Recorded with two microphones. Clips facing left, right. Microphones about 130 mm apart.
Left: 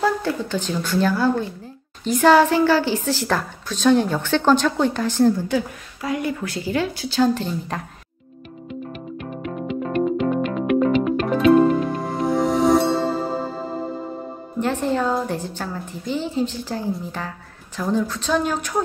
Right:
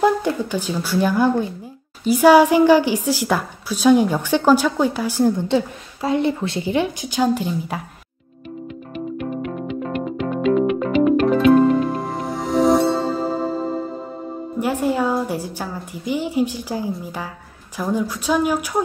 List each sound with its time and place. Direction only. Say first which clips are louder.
0.0 s a woman's voice: right 4 dB; 15° right (ahead or behind)
5.5 s speech: right 3 dB; 25° right (ahead or behind)
9.5 s music: even; centre (ahead or behind)
14.6 s a woman's voice: right 1 dB; 10° right (ahead or behind)